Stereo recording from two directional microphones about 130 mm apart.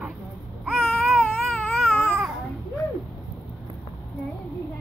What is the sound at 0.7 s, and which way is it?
Baby cry, centre (ahead or behind).